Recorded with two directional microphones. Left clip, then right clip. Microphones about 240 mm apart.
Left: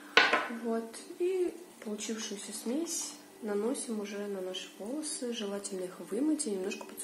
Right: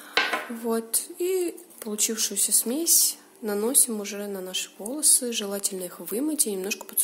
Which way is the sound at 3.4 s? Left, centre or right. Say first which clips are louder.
Right 7 dB; right.